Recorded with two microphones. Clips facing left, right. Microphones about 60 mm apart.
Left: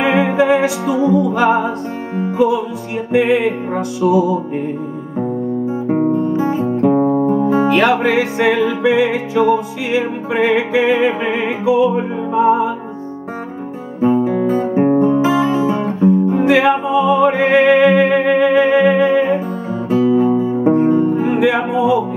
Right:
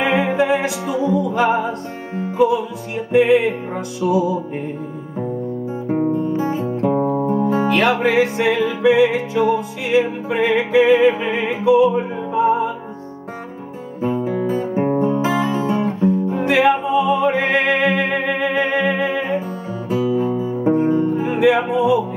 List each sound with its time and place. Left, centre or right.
0.0 s music: centre
5.9 s music: centre
6.1 s music: centre
6.9 s music: centre
7.2 s music: centre
14.0 s music: centre